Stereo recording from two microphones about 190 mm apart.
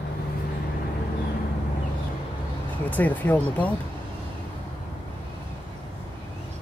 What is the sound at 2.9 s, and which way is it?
Speech, 10° left (ahead or behind).